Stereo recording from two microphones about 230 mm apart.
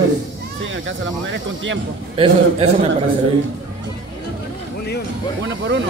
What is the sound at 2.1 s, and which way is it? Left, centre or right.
Speech, right.